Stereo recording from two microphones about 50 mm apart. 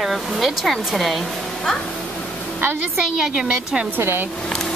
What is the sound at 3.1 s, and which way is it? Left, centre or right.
Speech, centre.